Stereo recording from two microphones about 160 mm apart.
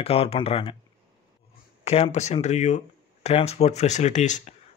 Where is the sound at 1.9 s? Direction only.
45° left (ahead or behind).